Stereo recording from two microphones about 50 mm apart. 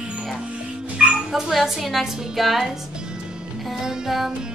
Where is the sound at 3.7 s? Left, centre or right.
Centre.